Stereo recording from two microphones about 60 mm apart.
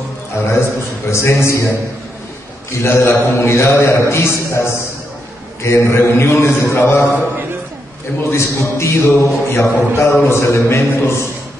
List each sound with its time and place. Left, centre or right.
1.1 s mantra: left
2.8 s mantra: left
8.3 s mantra: left